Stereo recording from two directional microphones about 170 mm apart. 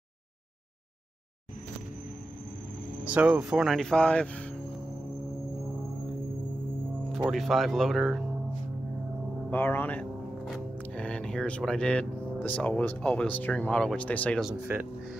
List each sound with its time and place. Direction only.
3.1 s speech: 5° right (ahead or behind); by 4.5 s 10° left (ahead or behind)
7.2 s speech: centre (ahead or behind)
9.5 s speech: 10° left (ahead or behind)
14.4 s speech: 10° right (ahead or behind)